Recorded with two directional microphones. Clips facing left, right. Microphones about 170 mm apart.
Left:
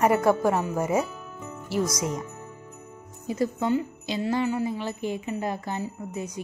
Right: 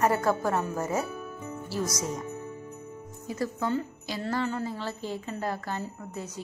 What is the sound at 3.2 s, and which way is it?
Speech, 20° left (ahead or behind).